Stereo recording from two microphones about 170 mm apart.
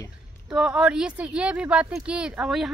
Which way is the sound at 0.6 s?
5° right (ahead or behind).